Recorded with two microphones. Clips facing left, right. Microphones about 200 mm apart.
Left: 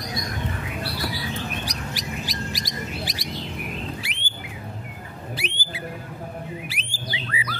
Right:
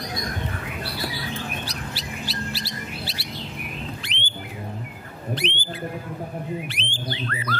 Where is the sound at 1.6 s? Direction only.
15° left (ahead or behind).